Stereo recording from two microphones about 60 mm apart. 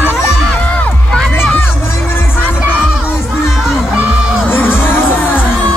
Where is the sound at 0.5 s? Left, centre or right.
Left.